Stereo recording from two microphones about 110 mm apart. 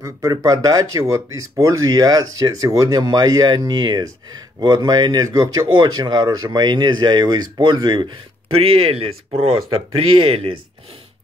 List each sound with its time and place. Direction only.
0.0 s speech: 30° right (ahead or behind)
8.5 s speech: 60° right (ahead or behind)